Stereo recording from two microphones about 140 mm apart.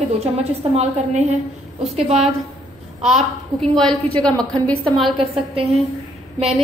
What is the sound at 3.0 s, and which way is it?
A woman's voice, centre (ahead or behind).